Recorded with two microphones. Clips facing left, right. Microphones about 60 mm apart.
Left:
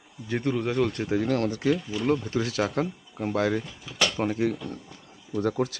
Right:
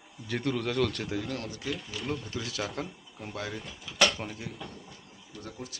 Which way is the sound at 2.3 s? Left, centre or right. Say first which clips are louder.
Left 9 dB; left.